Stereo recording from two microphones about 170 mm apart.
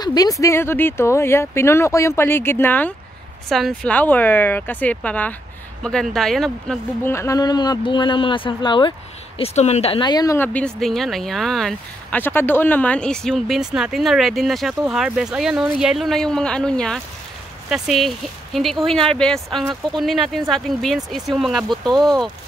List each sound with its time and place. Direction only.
0.0 s speech: 20° left (ahead or behind)
3.4 s speech: centre (ahead or behind)
7.0 s speech: 15° left (ahead or behind)
9.4 s speech: 40° left (ahead or behind); by 22.3 s centre (ahead or behind)